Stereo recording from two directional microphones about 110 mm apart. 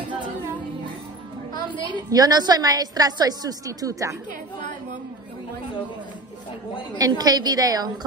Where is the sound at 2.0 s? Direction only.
35° right (ahead or behind).